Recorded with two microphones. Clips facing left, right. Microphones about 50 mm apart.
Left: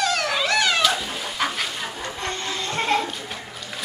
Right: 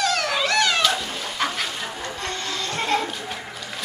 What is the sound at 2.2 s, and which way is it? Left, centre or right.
Vehicle, left.